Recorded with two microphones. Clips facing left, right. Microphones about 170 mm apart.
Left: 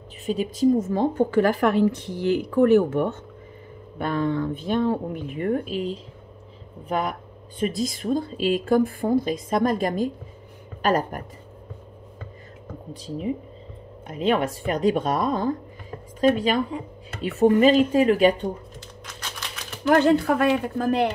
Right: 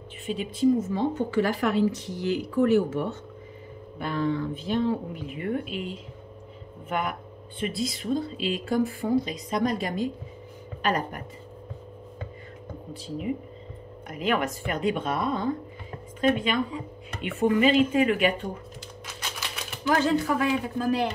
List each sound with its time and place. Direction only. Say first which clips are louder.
0.3 s speech: left 3 dB; 40° left (ahead or behind)
12.9 s speech: left 2 dB; 35° left (ahead or behind)
19.9 s speech: left 5 dB; 60° left (ahead or behind)